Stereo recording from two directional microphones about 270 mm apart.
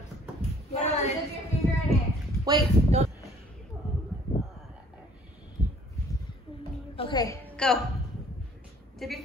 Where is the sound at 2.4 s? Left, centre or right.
Centre.